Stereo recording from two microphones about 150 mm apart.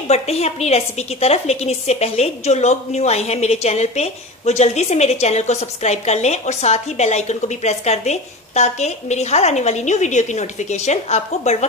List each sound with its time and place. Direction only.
0.1 s a woman's voice: 45° left (ahead or behind)